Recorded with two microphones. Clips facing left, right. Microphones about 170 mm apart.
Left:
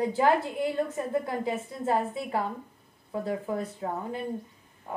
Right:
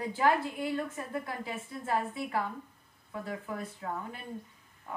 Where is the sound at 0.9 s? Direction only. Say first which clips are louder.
Left 8 dB; 20° left (ahead or behind).